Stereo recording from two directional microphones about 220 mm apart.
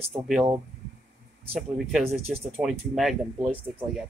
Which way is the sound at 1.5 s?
Centre (ahead or behind).